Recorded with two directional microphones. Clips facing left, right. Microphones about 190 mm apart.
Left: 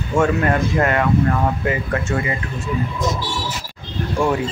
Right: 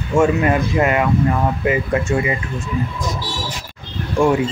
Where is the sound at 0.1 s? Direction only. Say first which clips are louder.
Right 2 dB; 10° right (ahead or behind).